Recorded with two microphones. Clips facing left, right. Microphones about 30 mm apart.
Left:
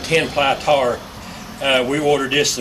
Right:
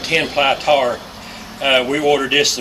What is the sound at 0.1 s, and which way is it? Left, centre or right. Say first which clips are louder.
Speech: right 1 dB; centre.